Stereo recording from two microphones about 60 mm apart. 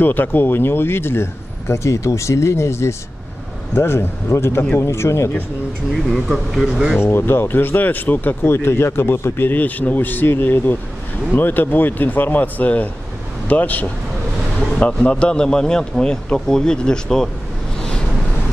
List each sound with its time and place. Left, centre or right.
0.0 s speech: left
6.0 s speech: centre
7.0 s speech: left; by 17.3 s centre